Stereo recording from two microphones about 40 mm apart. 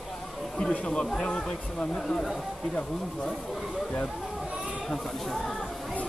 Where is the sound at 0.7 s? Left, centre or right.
Left.